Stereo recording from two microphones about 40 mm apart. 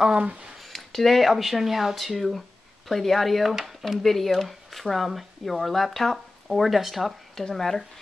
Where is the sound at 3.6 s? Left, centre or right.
Centre.